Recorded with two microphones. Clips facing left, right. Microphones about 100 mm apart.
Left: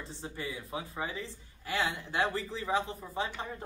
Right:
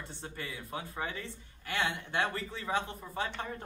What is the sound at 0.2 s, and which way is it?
Speech, 25° left (ahead or behind).